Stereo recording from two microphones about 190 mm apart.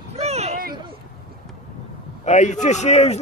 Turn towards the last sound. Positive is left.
turn(degrees=35)  # may be behind; listen again after turning